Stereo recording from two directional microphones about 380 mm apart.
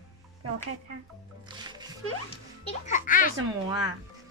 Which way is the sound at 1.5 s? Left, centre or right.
Centre.